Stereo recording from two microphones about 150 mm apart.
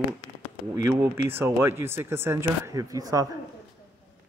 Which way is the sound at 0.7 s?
20° right (ahead or behind).